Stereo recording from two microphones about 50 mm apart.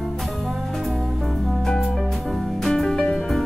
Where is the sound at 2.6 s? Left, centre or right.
Centre.